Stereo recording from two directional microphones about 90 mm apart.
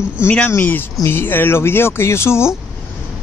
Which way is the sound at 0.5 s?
25° left (ahead or behind).